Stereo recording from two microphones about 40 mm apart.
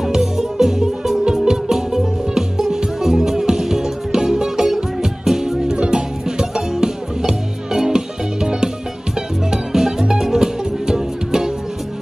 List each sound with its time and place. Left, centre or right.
0.0 s music: centre